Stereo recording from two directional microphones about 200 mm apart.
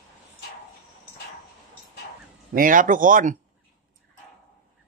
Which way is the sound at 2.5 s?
40° right (ahead or behind).